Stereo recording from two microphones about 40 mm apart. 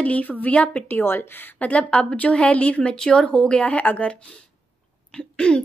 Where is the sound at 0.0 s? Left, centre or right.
Left.